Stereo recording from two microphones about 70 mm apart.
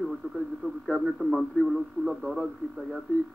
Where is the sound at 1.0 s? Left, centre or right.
Centre.